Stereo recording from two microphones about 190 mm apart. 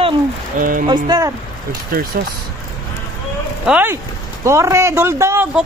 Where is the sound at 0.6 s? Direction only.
45° right (ahead or behind).